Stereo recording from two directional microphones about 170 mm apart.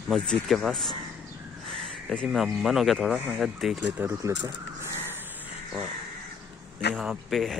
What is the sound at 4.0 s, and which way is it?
Speech, 15° right (ahead or behind).